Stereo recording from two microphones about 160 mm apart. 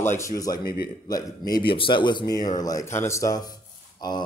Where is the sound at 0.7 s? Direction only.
25° left (ahead or behind).